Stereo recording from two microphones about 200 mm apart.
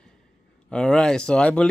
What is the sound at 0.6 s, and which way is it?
Speech, 5° left (ahead or behind).